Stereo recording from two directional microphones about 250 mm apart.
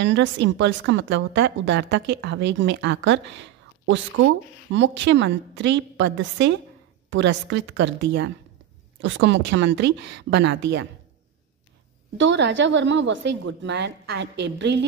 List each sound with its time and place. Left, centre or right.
0.0 s a woman's voice: right
12.2 s a woman's voice: right